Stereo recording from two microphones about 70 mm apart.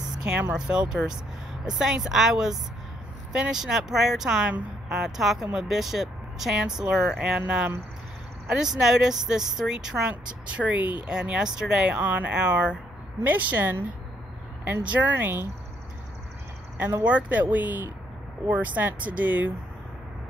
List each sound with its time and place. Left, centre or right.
0.2 s speech: right
10.5 s speech: centre
12.0 s speech: right
17.0 s speech: right